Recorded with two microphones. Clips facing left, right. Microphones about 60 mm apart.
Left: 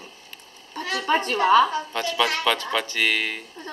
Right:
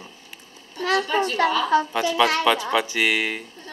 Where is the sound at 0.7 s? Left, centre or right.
Left.